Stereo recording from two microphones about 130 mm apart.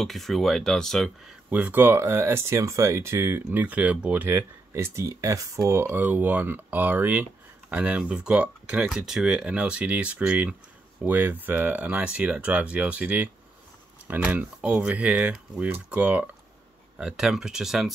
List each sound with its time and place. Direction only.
0.0 s speech: centre (ahead or behind)
1.5 s speech: 15° right (ahead or behind)